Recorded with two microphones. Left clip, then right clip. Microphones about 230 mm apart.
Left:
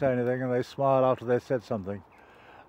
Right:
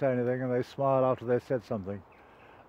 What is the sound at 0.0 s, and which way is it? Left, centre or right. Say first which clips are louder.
Speech: left 2 dB; centre.